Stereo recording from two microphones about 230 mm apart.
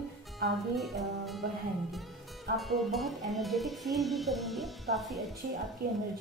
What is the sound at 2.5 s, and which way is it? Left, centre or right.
Speech, right.